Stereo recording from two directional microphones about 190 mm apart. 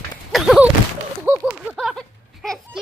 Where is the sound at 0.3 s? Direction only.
Centre (ahead or behind).